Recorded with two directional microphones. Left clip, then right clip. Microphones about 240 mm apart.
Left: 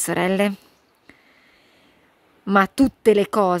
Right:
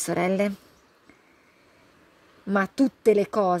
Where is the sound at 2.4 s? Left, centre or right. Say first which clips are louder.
Left 6 dB; centre.